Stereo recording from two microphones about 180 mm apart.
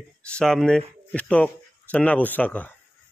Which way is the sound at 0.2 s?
5° left (ahead or behind).